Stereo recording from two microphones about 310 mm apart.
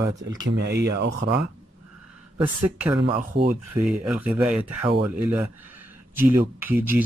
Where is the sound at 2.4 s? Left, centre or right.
Centre.